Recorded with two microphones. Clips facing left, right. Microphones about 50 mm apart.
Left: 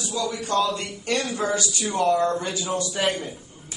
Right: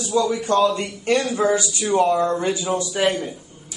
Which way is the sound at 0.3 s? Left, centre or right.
Right.